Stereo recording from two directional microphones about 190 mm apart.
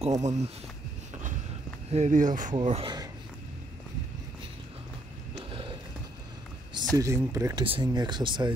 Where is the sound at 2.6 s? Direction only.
25° right (ahead or behind).